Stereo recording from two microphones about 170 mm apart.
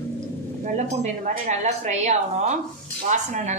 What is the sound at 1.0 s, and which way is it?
Speech, 45° right (ahead or behind).